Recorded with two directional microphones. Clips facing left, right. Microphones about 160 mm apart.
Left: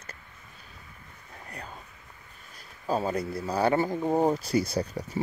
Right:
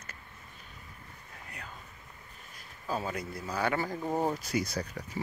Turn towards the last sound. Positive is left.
turn(degrees=30)  # may be behind; listen again after turning